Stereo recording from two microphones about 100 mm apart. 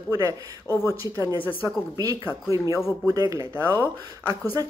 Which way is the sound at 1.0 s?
30° right (ahead or behind).